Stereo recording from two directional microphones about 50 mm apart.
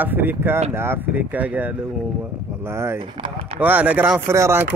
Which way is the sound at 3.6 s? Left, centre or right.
Right.